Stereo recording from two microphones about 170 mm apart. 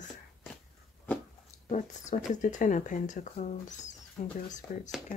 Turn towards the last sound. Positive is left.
turn(degrees=45)  # may be behind; listen again after turning